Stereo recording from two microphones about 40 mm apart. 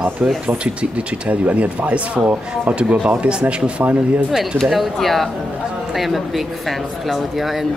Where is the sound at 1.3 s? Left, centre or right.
Right.